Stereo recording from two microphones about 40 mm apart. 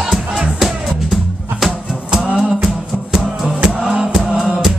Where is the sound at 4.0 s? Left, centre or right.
Centre.